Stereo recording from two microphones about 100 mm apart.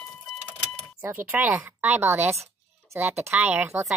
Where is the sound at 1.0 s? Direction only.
25° right (ahead or behind).